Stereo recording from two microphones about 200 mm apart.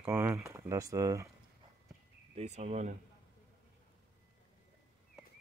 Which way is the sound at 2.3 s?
35° right (ahead or behind).